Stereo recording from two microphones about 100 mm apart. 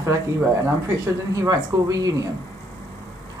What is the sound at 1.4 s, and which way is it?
Speech, 35° right (ahead or behind).